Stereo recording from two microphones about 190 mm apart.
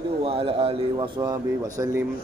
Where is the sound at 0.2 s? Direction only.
30° right (ahead or behind).